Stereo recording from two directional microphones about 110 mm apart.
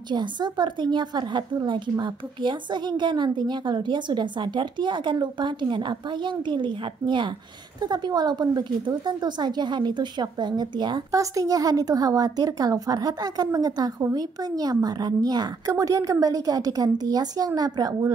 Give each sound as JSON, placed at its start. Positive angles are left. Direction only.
{"t": 0.1, "sound": "a woman's voice", "side_deg": -45}
{"t": 11.1, "sound": "speech", "side_deg": -30}